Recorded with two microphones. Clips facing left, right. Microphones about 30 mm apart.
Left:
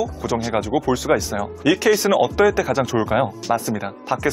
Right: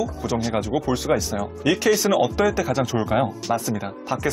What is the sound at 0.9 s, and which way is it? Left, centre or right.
Speech, left.